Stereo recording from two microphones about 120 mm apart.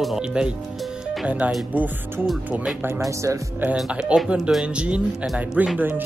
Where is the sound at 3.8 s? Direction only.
10° right (ahead or behind).